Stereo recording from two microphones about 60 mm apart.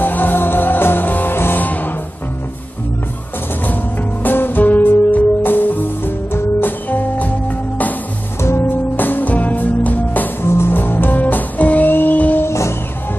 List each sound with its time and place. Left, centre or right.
0.0 s music: left
4.2 s music: left
8.4 s music: left
10.4 s music: left
12.4 s music: left